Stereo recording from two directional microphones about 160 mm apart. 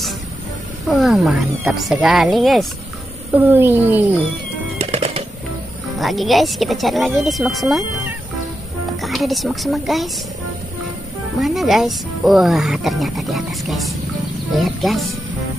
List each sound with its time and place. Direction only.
0.8 s speech: centre (ahead or behind)
3.3 s speech: 15° right (ahead or behind)
4.7 s music: 40° right (ahead or behind)
5.9 s speech: centre (ahead or behind)
9.0 s speech: centre (ahead or behind)
11.4 s speech: centre (ahead or behind)